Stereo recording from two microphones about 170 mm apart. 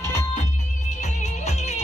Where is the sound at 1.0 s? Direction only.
40° left (ahead or behind).